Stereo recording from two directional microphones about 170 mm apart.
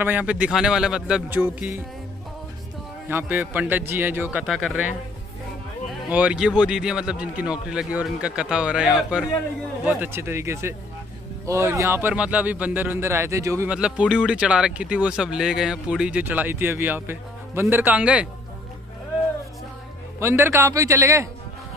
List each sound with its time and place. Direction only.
0.0 s speech: 10° right (ahead or behind)
3.1 s speech: 10° right (ahead or behind)
6.1 s speech: 5° right (ahead or behind)
13.7 s speech: 5° right (ahead or behind)
20.2 s speech: 15° right (ahead or behind)